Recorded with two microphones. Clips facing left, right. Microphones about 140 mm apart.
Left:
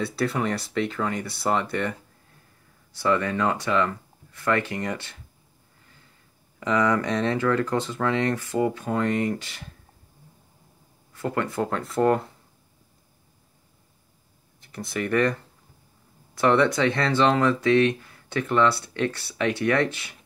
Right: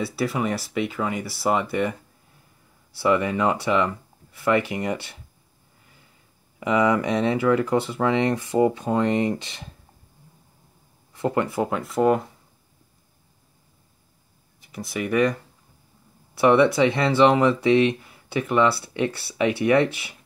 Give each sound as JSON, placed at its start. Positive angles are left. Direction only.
{"t": 0.0, "sound": "speech", "side_deg": -5}
{"t": 3.0, "sound": "speech", "side_deg": -15}
{"t": 6.6, "sound": "speech", "side_deg": -10}
{"t": 11.1, "sound": "speech", "side_deg": -15}
{"t": 14.6, "sound": "speech", "side_deg": -5}
{"t": 16.3, "sound": "speech", "side_deg": -10}